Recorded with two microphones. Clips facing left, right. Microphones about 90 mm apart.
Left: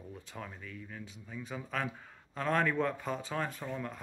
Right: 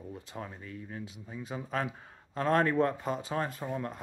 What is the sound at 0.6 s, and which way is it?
Speech, 35° right (ahead or behind).